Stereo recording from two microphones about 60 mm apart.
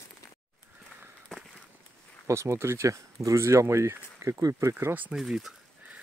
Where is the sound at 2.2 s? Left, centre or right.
Right.